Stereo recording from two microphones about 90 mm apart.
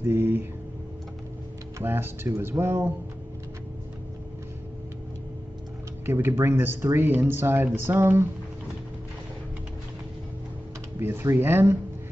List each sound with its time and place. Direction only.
0.0 s a sound: 25° right (ahead or behind)
1.8 s speech: 30° right (ahead or behind)
6.0 s speech: 25° right (ahead or behind)
11.0 s speech: 25° right (ahead or behind)